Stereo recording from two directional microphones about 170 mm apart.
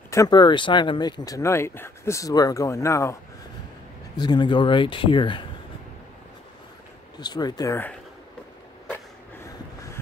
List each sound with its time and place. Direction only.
0.1 s speech: 20° left (ahead or behind)
4.2 s speech: 25° left (ahead or behind)
7.2 s speech: 25° left (ahead or behind)